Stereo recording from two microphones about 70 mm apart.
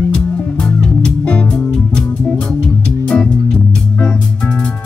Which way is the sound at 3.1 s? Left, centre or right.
Centre.